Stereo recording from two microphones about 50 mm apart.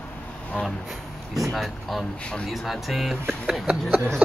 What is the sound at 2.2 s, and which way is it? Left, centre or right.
Speech, left.